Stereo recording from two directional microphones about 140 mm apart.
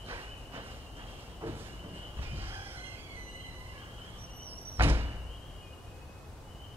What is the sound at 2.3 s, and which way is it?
Train, 15° right (ahead or behind).